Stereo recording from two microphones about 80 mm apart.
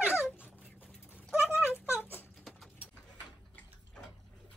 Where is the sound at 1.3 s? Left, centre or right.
Centre.